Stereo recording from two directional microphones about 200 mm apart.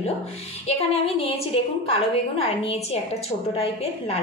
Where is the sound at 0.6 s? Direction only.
30° left (ahead or behind).